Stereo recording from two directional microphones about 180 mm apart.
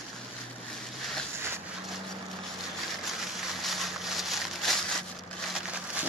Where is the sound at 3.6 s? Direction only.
Centre (ahead or behind).